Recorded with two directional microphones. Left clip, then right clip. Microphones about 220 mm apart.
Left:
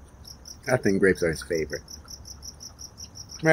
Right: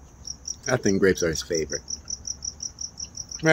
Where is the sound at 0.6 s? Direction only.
10° right (ahead or behind).